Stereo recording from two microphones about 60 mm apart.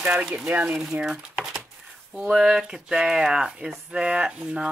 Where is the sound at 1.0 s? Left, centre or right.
Centre.